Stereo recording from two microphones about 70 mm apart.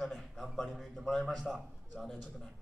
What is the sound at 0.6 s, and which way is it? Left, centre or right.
Speech, centre.